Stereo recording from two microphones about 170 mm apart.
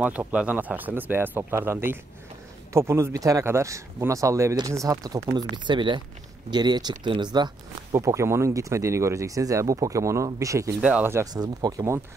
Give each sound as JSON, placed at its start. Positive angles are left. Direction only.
{"t": 0.0, "sound": "speech", "side_deg": -10}
{"t": 10.8, "sound": "speech", "side_deg": -10}